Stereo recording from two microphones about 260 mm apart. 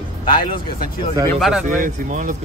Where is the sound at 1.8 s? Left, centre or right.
Right.